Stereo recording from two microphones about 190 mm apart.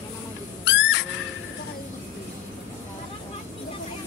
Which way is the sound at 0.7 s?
70° left (ahead or behind).